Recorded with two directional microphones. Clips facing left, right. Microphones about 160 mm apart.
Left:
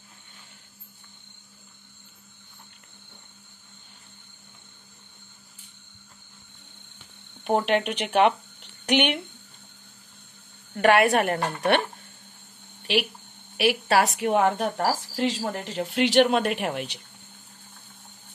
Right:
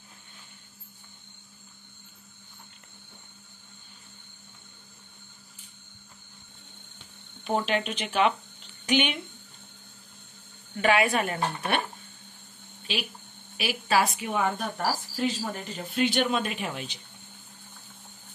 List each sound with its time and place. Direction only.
7.4 s speech: 60° left (ahead or behind)
10.8 s a woman's voice: 65° left (ahead or behind)
12.9 s a woman's voice: 75° left (ahead or behind)